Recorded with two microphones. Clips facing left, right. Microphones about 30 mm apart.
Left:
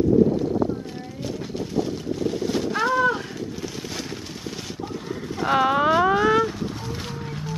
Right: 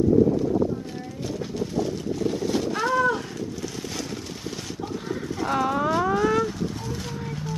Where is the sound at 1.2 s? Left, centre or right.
Centre.